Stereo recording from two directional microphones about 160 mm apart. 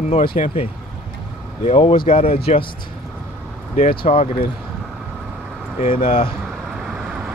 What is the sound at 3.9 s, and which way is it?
Speech, 35° left (ahead or behind).